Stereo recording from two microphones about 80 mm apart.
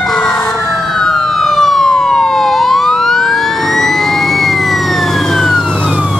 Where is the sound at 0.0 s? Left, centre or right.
Centre.